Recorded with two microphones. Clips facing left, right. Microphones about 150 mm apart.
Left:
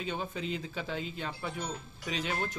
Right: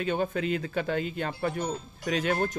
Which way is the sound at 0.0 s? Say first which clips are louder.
Right 8 dB; 55° right (ahead or behind).